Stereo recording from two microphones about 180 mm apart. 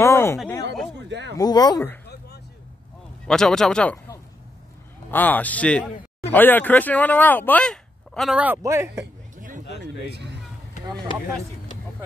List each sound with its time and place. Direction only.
0.0 s speech: 15° left (ahead or behind)
1.0 s speech: 80° right
1.3 s speech: 20° left (ahead or behind)
2.0 s vehicle: 65° left (ahead or behind)
3.3 s speech: 5° left (ahead or behind)
5.1 s speech: 10° left (ahead or behind); by 9.0 s 15° right (ahead or behind)
10.0 s speech: 65° right (ahead or behind)